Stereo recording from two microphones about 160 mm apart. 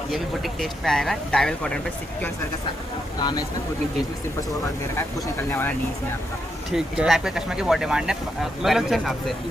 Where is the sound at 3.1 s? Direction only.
25° left (ahead or behind).